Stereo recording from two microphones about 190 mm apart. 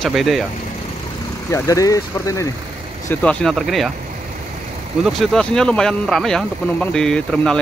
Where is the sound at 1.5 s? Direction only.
15° left (ahead or behind).